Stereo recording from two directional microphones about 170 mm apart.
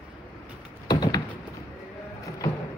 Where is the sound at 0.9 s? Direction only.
20° left (ahead or behind).